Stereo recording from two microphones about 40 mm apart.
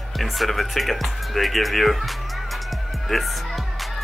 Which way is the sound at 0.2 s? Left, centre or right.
Centre.